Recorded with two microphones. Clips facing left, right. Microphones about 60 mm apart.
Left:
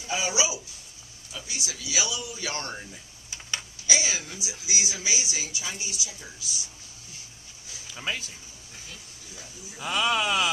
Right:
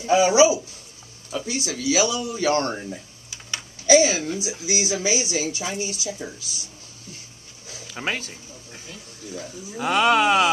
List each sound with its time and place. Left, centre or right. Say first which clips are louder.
0.1 s a woman's voice: right 13 dB; right
3.8 s a woman's voice: right 13 dB; right
7.6 s a sound: right 5 dB; right
9.3 s speech: right 11 dB; right